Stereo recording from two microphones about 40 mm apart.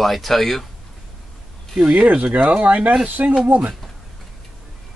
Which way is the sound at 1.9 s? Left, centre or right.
Right.